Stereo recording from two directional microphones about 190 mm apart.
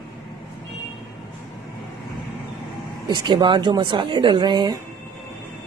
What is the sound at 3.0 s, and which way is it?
A woman's voice, 25° right (ahead or behind).